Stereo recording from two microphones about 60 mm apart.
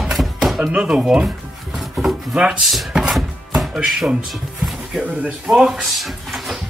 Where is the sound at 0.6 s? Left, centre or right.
Centre.